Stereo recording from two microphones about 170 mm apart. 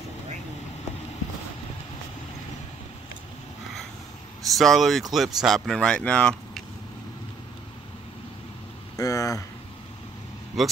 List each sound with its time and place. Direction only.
4.6 s speech: centre (ahead or behind)
8.9 s a sound: 20° left (ahead or behind)
10.6 s speech: centre (ahead or behind)